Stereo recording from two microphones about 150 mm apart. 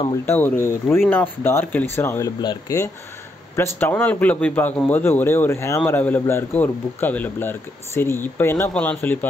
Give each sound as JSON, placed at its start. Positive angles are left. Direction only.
{"t": 0.3, "sound": "a man's voice", "side_deg": 15}